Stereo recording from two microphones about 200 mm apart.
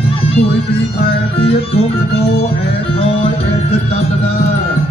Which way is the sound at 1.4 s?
30° left (ahead or behind).